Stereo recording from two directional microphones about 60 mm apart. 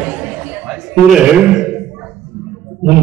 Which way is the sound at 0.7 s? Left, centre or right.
Centre.